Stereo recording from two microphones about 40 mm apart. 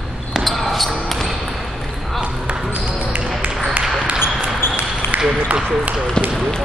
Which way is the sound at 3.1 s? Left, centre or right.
Right.